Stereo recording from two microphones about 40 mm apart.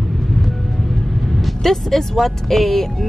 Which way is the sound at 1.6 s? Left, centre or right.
Centre.